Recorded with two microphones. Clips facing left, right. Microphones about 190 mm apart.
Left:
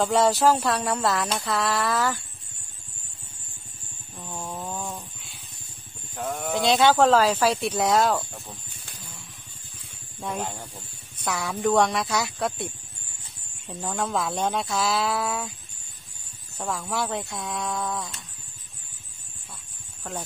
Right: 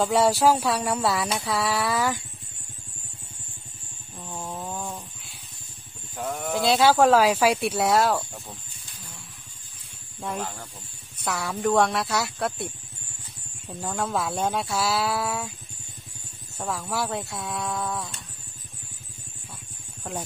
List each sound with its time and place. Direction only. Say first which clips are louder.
0.0 s speech: even; 10° right (ahead or behind)
4.2 s a sound: even; 5° right (ahead or behind)
6.1 s speech: even; centre (ahead or behind)
10.4 s speech: left 1 dB; 15° left (ahead or behind)
11.1 s speech: even; centre (ahead or behind)
13.7 s speech: even; centre (ahead or behind)
16.5 s speech: even; centre (ahead or behind)
20.0 s a sound: right 1 dB; 10° right (ahead or behind)